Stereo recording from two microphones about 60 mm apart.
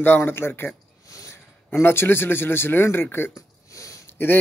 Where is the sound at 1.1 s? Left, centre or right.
Left.